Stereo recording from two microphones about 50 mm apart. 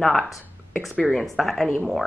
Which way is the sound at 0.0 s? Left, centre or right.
Centre.